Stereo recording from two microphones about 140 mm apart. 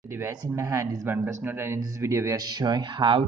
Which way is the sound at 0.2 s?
20° right (ahead or behind).